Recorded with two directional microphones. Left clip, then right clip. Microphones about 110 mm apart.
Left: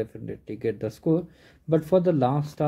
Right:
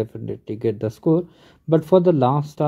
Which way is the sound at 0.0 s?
35° right (ahead or behind).